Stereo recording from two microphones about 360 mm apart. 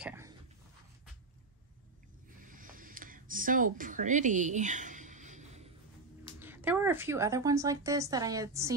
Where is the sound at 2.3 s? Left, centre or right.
Right.